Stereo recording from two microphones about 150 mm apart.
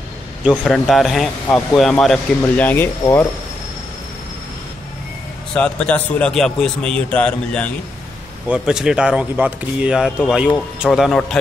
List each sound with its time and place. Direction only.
0.7 s a man's voice: centre (ahead or behind)
5.5 s a man's voice: 10° left (ahead or behind)
8.5 s speech: 5° right (ahead or behind)